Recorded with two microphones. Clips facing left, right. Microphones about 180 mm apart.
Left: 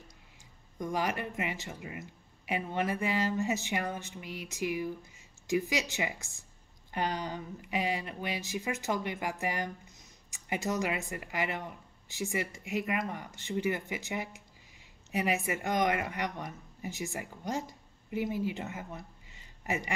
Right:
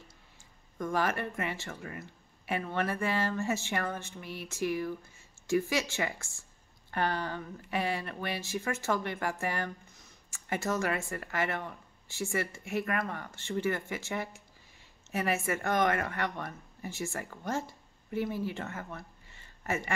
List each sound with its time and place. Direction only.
0.7 s speech: 15° left (ahead or behind)